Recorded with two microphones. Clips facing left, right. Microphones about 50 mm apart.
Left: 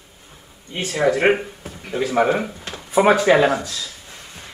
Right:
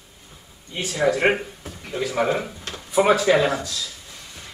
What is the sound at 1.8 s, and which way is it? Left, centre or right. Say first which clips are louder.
Speech: left 4 dB; left.